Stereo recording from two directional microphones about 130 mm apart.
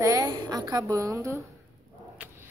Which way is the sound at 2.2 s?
10° right (ahead or behind).